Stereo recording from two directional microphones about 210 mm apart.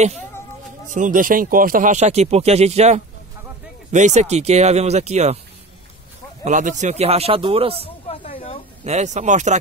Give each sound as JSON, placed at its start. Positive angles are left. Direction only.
{"t": 0.8, "sound": "speech", "side_deg": -35}
{"t": 6.4, "sound": "speech", "side_deg": -35}
{"t": 7.7, "sound": "a sound", "side_deg": 25}
{"t": 8.8, "sound": "speech", "side_deg": -35}